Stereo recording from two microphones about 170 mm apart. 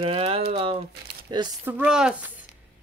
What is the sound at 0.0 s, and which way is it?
Speech, 35° right (ahead or behind).